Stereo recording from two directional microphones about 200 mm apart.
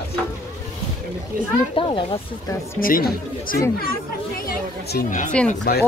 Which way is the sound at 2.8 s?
45° left (ahead or behind).